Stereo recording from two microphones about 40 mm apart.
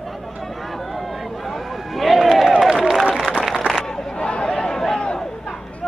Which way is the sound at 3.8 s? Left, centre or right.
Centre.